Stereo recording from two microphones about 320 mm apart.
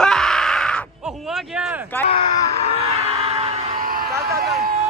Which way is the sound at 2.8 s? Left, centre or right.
Centre.